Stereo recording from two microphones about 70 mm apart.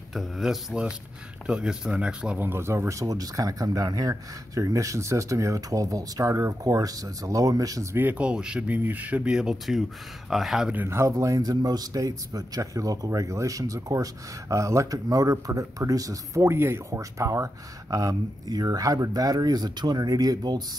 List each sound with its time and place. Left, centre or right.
0.1 s speech: centre
2.3 s speech: right
7.9 s speech: right
8.2 s speech: centre
8.6 s speech: right; by 10.7 s centre
10.9 s a man's voice: right
16.5 s speech: right
17.0 s a man's voice: right